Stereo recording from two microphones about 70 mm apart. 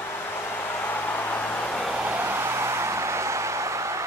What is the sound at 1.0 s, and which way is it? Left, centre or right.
Vehicle, left.